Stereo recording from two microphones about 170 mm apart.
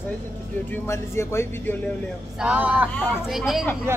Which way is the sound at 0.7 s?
15° left (ahead or behind).